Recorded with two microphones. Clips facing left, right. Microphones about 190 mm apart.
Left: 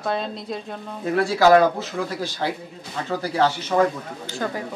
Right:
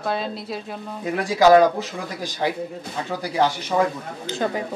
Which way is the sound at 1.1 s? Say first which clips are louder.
Right 1 dB; 15° right (ahead or behind).